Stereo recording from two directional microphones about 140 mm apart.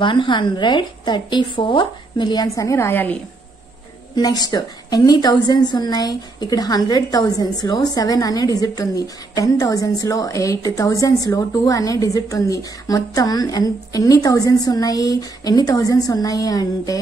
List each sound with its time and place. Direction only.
0.0 s a woman's voice: 35° left (ahead or behind); by 3.2 s 15° left (ahead or behind)
4.1 s a woman's voice: 30° left (ahead or behind)